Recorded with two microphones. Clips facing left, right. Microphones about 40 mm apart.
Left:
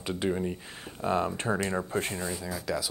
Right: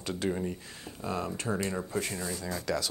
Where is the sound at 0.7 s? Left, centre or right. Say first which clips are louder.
Left 6 dB; left.